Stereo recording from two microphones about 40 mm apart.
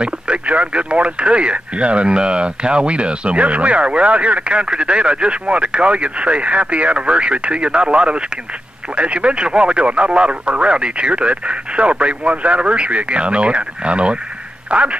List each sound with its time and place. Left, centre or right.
0.0 s speech: right